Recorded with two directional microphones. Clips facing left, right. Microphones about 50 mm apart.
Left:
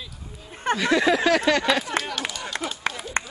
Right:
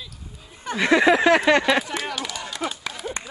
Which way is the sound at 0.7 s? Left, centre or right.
Right.